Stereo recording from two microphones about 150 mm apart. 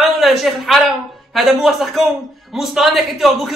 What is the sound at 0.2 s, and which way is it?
Speech, centre (ahead or behind).